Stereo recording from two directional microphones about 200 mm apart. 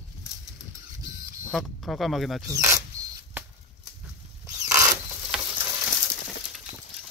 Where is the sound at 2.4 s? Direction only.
15° right (ahead or behind).